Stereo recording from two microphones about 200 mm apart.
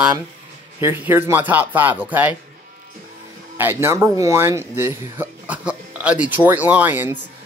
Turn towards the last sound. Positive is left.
turn(degrees=-10)  # may be behind; listen again after turning